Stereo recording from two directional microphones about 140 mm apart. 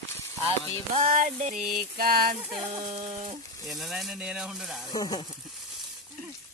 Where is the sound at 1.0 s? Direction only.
65° right (ahead or behind).